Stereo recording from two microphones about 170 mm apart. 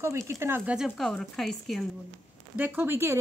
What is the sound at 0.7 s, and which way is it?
A woman's voice, centre (ahead or behind).